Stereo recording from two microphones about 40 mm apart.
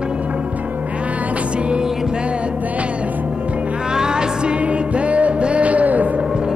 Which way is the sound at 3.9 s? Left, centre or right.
Centre.